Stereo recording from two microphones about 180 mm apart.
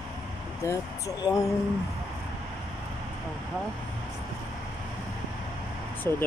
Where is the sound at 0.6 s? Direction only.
20° left (ahead or behind).